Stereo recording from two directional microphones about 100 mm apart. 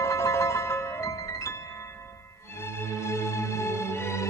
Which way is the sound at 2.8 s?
25° left (ahead or behind).